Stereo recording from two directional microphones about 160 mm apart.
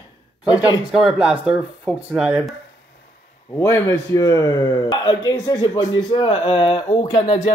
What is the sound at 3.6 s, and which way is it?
A man's voice, 15° left (ahead or behind).